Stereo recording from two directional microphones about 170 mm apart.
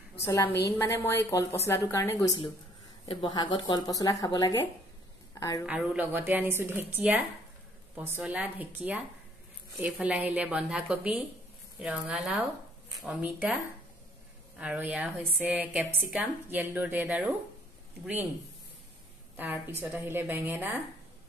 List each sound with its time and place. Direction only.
0.2 s a woman's voice: 20° left (ahead or behind)
3.1 s speech: 30° left (ahead or behind)
5.7 s a woman's voice: 10° right (ahead or behind)
14.6 s a woman's voice: 5° right (ahead or behind)
19.3 s a woman's voice: 10° right (ahead or behind)